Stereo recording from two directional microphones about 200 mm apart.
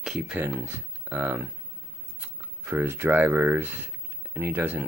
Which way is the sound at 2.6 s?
10° right (ahead or behind).